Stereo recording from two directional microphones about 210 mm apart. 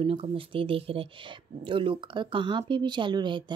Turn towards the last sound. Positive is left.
turn(degrees=-20)  # may be behind; listen again after turning